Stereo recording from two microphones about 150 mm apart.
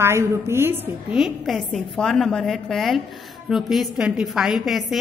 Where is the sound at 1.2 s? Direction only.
Centre (ahead or behind).